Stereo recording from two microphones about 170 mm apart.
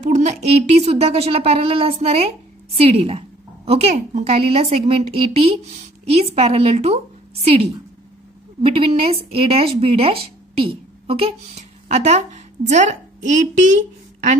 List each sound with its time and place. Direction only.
0.0 s a woman's voice: 40° right (ahead or behind)
8.6 s speech: 35° right (ahead or behind)